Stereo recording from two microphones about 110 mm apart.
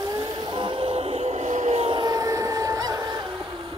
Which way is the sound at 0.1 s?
45° right (ahead or behind).